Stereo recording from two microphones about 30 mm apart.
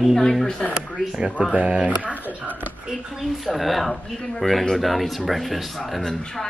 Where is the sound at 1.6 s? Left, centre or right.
Right.